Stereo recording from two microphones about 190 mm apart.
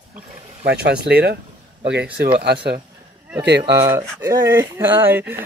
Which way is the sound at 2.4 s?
60° right (ahead or behind).